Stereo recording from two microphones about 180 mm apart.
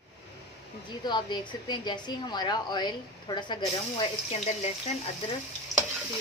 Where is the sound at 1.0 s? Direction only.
25° left (ahead or behind).